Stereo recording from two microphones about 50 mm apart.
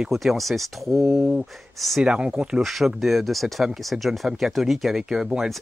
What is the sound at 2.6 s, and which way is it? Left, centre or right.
Speech, centre.